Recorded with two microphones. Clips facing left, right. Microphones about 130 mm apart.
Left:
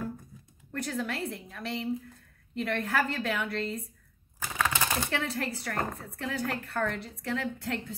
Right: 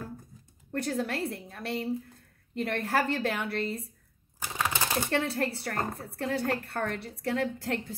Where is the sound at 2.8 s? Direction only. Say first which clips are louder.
Right 4 dB; 35° right (ahead or behind).